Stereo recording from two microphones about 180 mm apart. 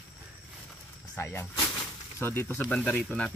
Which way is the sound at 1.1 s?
10° left (ahead or behind).